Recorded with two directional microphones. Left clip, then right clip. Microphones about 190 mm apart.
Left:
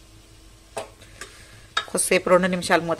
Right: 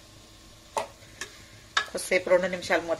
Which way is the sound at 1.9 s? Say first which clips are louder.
Left 6 dB; 55° left (ahead or behind).